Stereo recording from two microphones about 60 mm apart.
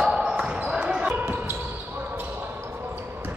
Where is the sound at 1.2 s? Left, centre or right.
Right.